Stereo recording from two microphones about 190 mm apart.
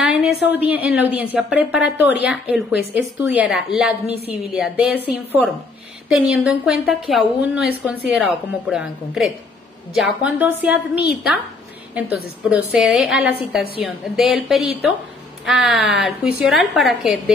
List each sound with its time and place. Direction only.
0.0 s a woman's voice: 5° right (ahead or behind)
11.9 s a woman's voice: 5° right (ahead or behind)